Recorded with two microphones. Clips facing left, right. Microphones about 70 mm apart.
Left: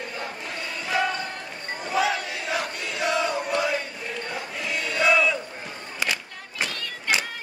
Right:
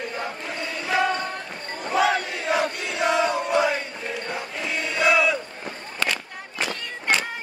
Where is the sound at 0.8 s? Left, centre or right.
Centre.